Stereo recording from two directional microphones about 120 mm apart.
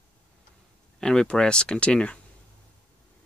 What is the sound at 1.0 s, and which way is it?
Speech, 5° left (ahead or behind).